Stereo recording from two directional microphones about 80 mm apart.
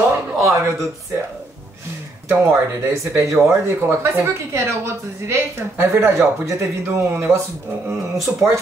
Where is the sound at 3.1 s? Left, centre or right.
Right.